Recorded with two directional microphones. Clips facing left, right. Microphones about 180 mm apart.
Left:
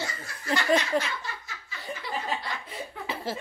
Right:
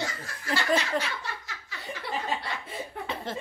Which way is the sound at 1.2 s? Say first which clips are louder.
Right 1 dB; 70° right (ahead or behind).